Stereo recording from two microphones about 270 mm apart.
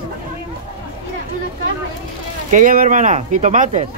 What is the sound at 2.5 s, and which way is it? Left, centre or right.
Speech, right.